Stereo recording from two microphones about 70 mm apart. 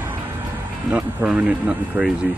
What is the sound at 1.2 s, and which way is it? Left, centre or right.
Speech, centre.